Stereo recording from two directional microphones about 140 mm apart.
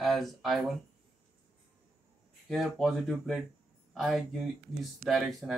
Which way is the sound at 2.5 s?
Centre (ahead or behind).